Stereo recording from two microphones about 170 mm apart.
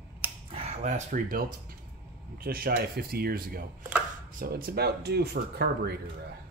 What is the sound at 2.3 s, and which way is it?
Speech, 60° right (ahead or behind).